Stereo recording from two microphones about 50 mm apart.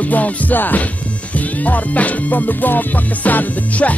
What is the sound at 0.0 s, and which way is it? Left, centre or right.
Music, left.